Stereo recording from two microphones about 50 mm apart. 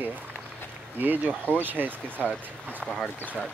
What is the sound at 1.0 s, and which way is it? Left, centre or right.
Speech, right.